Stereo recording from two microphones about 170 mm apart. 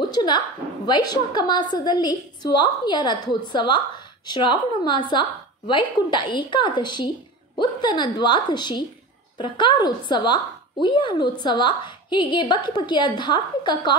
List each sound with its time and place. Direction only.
0.0 s a woman's voice: 25° left (ahead or behind)